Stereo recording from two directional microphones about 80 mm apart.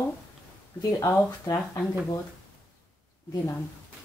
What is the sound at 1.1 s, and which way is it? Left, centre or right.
Speech, left.